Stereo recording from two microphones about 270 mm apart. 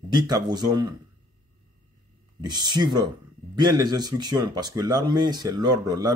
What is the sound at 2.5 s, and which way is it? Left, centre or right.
Speech, centre.